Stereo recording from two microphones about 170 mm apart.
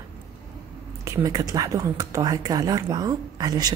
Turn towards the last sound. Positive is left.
turn(degrees=-20)  # may be behind; listen again after turning